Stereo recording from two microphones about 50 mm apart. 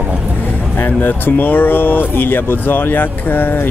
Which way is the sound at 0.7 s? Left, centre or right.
Left.